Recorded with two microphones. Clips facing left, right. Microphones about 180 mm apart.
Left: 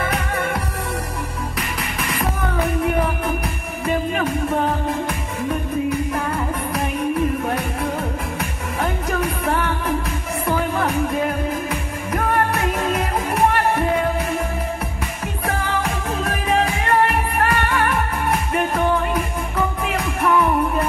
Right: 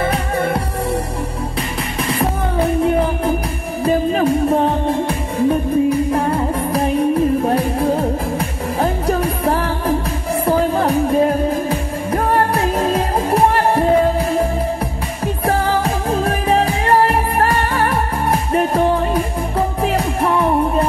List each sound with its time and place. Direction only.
0.0 s music: 30° right (ahead or behind)
2.0 s music: 30° right (ahead or behind)